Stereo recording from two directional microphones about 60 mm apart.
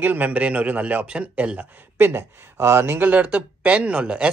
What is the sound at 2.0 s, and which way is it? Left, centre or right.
Speech, right.